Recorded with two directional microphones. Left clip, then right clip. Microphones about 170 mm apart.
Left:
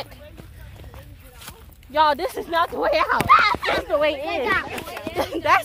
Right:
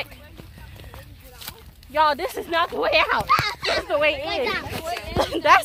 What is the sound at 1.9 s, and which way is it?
Speech, 30° left (ahead or behind).